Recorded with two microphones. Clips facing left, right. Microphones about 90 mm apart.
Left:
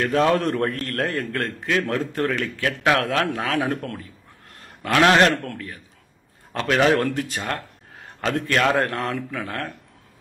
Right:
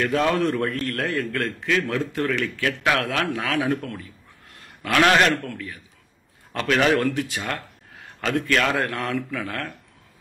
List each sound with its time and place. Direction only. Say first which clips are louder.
0.0 s a man's voice: left 2 dB; 35° left (ahead or behind); by 4.0 s 50° left (ahead or behind)
4.8 s a man's voice: left 2 dB; 30° left (ahead or behind)
7.0 s a man's voice: even; 45° left (ahead or behind); by 9.7 s 25° left (ahead or behind)